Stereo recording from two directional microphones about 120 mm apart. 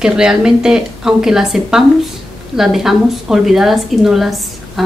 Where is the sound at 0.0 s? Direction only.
5° right (ahead or behind).